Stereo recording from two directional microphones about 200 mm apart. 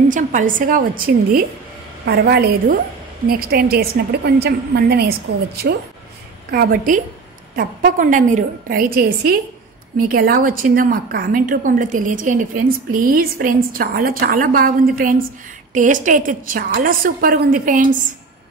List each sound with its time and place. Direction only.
0.1 s a woman's voice: 40° right (ahead or behind)
6.5 s a woman's voice: 45° right (ahead or behind)